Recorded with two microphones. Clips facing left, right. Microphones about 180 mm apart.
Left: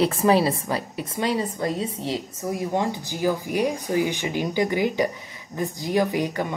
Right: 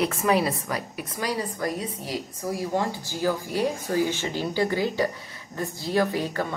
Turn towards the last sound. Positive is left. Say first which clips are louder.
# left 2 dB
turn(degrees=15)  # may be behind; listen again after turning